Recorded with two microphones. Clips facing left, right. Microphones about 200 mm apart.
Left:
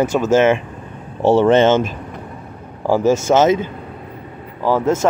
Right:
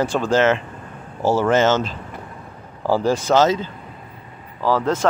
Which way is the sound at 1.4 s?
25° left (ahead or behind).